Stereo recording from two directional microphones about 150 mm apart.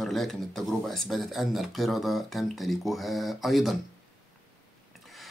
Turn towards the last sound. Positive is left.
turn(degrees=0)  # may be behind; listen again after turning